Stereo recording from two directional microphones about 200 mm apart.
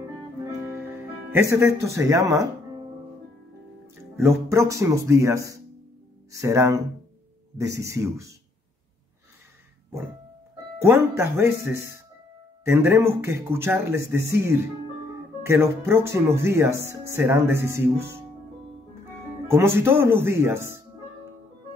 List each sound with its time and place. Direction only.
0.7 s speech: 10° right (ahead or behind)
4.0 s speech: 15° right (ahead or behind)
10.8 s speech: 15° right (ahead or behind)
19.4 s speech: 10° right (ahead or behind)